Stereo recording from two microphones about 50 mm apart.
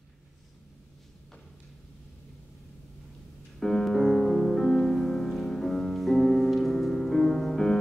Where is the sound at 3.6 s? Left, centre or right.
Centre.